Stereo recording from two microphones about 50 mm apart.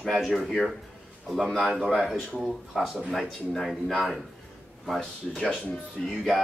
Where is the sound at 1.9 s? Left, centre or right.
Centre.